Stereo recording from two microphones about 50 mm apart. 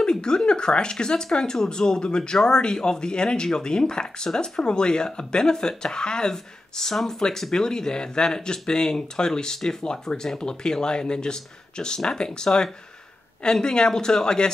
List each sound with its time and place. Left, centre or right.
0.0 s speech: centre